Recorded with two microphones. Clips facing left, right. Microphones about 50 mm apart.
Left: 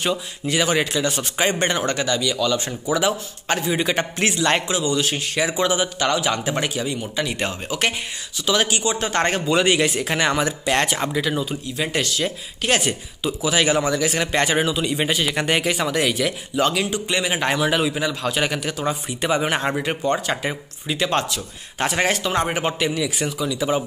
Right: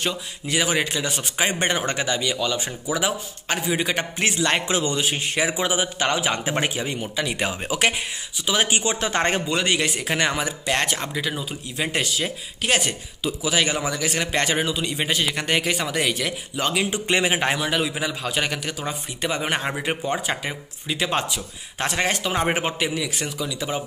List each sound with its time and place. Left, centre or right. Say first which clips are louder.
0.0 s speech: left 4 dB; centre
4.6 s a man's voice: left 2 dB; right
5.0 s speech: left 1 dB; right
6.0 s speech: left 2 dB; right
7.2 s a man's voice: even; centre; by 8.9 s right
9.5 s a man's voice: left 4 dB; centre
11.7 s speech: even; centre
12.6 s a man's voice: left 2 dB; centre
16.9 s speech: right 1 dB; right
17.6 s a man's voice: left 4 dB; centre
21.4 s a man's voice: left 3 dB; centre
22.4 s speech: even; centre
22.7 s a man's voice: left 3 dB; centre